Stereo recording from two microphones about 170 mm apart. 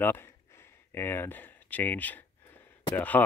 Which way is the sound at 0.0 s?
15° left (ahead or behind).